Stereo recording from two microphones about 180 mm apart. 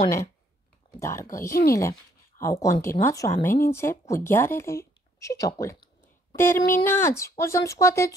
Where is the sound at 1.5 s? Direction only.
55° left (ahead or behind).